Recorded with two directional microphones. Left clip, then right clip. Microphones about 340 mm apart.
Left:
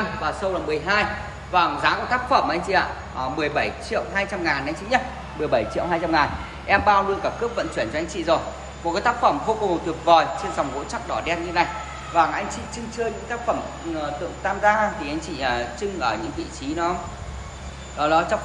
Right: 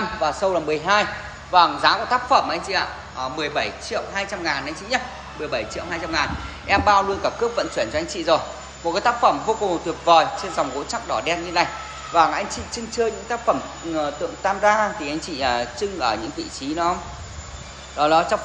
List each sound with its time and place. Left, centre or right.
0.2 s a man's voice: centre
17.9 s a man's voice: centre